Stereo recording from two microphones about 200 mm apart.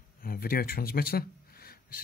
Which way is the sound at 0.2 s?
45° left (ahead or behind).